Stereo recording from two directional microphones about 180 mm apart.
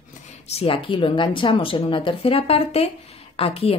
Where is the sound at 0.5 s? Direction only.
30° left (ahead or behind).